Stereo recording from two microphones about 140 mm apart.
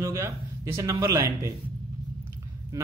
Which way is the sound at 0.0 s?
20° right (ahead or behind).